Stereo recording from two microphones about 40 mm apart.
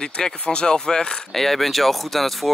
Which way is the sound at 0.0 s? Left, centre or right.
Left.